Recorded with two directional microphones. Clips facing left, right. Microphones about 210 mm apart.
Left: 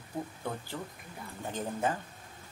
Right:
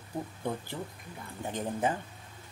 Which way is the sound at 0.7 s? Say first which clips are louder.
Right 1 dB; 15° right (ahead or behind).